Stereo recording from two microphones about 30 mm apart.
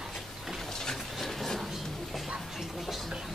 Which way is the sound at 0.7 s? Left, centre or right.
Centre.